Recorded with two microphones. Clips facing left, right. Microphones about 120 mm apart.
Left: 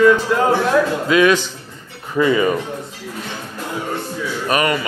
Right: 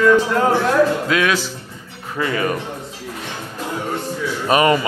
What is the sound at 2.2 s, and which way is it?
Speech, 10° left (ahead or behind).